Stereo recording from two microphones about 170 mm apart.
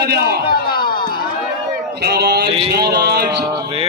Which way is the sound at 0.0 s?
70° right (ahead or behind).